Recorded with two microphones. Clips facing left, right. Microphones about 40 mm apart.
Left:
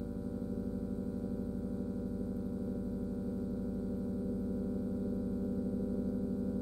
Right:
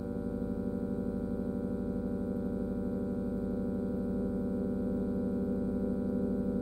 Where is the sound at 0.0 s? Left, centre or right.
Right.